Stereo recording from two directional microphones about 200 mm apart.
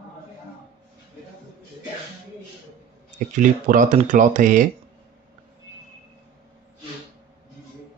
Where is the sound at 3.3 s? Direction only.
40° right (ahead or behind).